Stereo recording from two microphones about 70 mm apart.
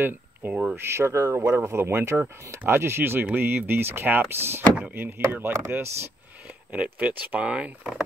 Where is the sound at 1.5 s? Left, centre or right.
Right.